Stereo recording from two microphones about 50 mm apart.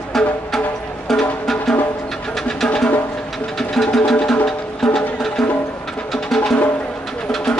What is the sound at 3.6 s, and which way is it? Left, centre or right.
Sewing machine, centre.